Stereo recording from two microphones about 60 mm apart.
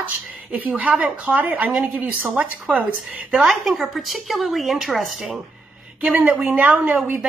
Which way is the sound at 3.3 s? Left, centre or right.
Centre.